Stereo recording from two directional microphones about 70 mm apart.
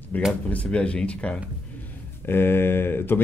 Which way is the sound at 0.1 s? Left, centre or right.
Left.